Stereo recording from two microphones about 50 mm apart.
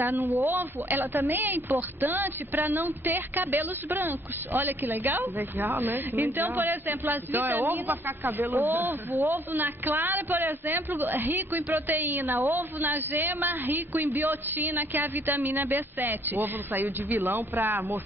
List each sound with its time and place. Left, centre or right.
0.0 s speech: right
0.5 s a woman's voice: right